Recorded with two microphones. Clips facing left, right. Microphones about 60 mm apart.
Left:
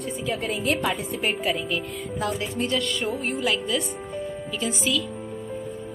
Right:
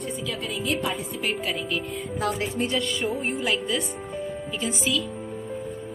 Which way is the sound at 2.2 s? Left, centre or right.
Right.